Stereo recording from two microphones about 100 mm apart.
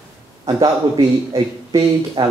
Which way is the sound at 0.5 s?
40° right (ahead or behind).